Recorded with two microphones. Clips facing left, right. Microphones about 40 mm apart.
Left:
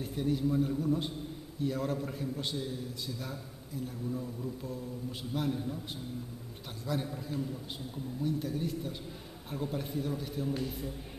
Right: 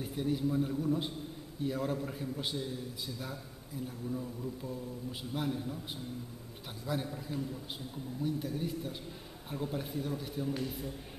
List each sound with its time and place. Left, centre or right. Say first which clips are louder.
0.0 s a man's voice: left 2 dB; centre
6.9 s a man's voice: left 1 dB; centre